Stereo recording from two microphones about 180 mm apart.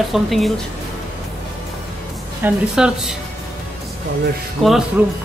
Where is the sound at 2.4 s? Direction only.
5° right (ahead or behind).